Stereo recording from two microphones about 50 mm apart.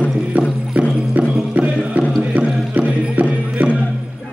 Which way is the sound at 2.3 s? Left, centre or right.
Right.